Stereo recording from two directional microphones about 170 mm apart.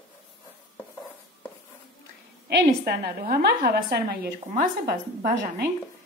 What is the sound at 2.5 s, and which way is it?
A woman's voice, 70° right (ahead or behind).